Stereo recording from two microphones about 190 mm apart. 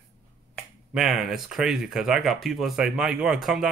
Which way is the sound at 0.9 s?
Centre (ahead or behind).